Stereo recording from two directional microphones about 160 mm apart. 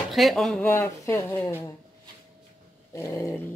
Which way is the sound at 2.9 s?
20° left (ahead or behind).